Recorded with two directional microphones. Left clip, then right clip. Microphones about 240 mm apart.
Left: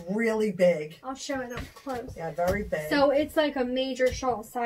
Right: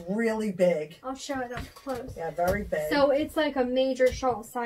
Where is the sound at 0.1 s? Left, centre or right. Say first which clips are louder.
Left 2 dB; centre.